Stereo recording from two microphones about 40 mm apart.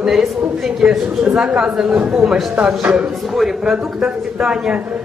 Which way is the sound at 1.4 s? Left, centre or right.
Right.